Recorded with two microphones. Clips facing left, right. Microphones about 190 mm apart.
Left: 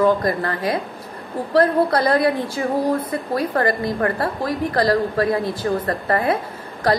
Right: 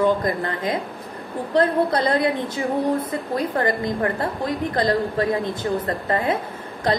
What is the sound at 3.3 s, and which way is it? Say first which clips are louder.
A woman's voice: left 2 dB; 20° right (ahead or behind).